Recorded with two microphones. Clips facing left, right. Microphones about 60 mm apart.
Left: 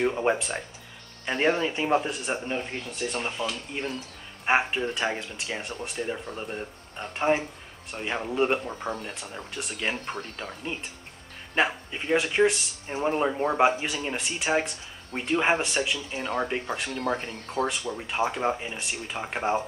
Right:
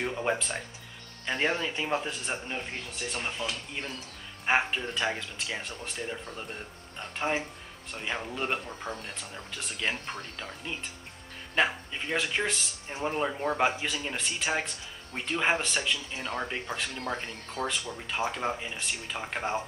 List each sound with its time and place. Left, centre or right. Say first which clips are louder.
0.0 s speech: left 5 dB; centre
1.9 s speech: left 6 dB; centre
4.5 s speech: left 3 dB; centre
9.5 s speech: left 2 dB; centre